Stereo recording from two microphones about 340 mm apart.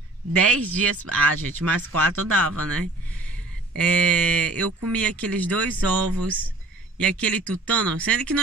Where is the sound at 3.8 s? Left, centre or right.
Centre.